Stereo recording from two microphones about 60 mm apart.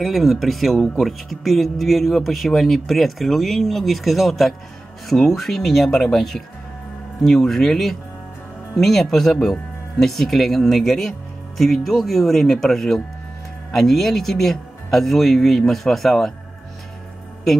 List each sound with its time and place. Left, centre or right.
0.0 s speech: centre